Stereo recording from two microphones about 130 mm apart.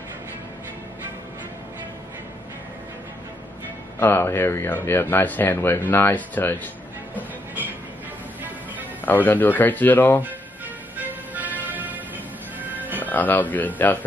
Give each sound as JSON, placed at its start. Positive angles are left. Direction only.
{"t": 4.0, "sound": "speech", "side_deg": 15}
{"t": 9.0, "sound": "speech", "side_deg": 15}
{"t": 11.0, "sound": "music", "side_deg": -15}
{"t": 13.0, "sound": "speech", "side_deg": 15}